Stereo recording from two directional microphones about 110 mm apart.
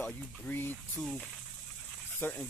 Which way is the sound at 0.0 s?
5° left (ahead or behind).